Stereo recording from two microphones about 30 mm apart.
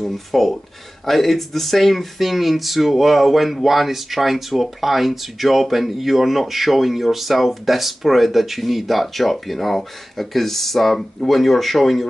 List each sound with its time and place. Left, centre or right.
0.0 s speech: centre